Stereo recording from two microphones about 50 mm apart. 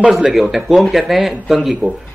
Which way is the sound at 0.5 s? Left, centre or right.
Centre.